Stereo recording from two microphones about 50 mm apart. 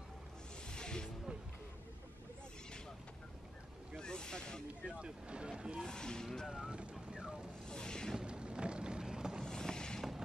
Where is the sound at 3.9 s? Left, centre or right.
Centre.